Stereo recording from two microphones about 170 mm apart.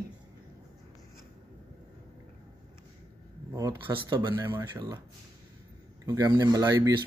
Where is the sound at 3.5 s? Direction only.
25° right (ahead or behind).